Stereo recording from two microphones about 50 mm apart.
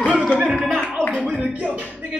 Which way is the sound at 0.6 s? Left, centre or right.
Right.